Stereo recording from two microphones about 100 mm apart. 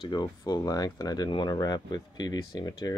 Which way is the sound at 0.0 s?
45° left (ahead or behind).